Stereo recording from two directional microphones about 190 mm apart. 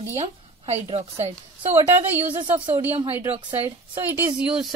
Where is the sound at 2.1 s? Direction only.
10° right (ahead or behind).